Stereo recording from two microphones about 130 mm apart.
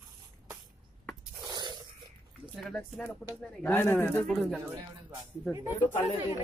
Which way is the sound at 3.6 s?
15° left (ahead or behind).